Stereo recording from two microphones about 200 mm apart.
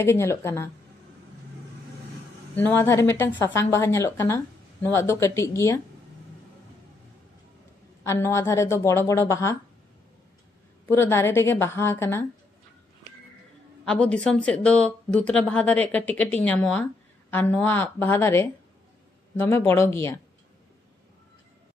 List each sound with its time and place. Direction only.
0.0 s a woman's voice: 15° left (ahead or behind)
2.5 s a woman's voice: 10° left (ahead or behind)
8.0 s a woman's voice: 15° left (ahead or behind)
10.9 s a woman's voice: 10° left (ahead or behind)
13.8 s a woman's voice: 5° left (ahead or behind)